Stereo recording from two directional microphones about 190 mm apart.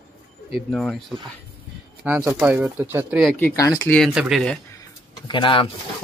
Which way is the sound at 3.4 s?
15° left (ahead or behind).